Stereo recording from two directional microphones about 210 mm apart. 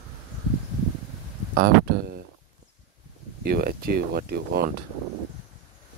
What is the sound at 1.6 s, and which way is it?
Speech, 50° right (ahead or behind).